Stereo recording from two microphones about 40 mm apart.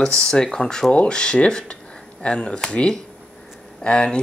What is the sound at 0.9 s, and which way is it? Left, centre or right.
Speech, left.